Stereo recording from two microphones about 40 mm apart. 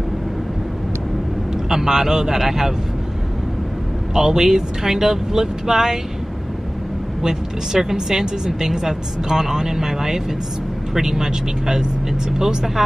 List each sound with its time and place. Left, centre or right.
1.5 s a woman's voice: centre
4.1 s a woman's voice: centre
7.2 s a woman's voice: centre